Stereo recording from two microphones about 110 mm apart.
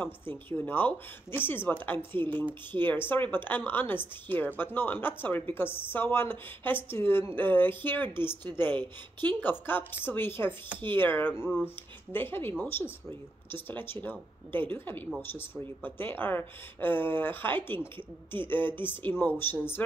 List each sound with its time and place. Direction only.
0.0 s a woman's voice: 20° left (ahead or behind)
9.4 s a woman's voice: 20° left (ahead or behind)